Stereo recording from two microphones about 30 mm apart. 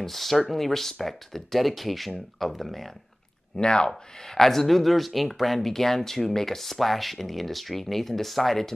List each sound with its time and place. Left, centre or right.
0.0 s speech: centre
3.5 s speech: left
4.2 s speech: centre